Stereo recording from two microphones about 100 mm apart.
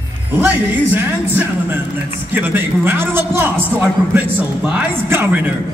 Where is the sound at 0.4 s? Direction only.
20° right (ahead or behind).